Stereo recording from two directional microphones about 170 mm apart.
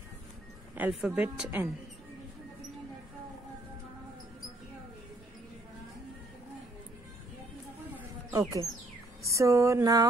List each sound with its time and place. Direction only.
0.7 s speech: 10° right (ahead or behind)
8.3 s speech: 20° right (ahead or behind)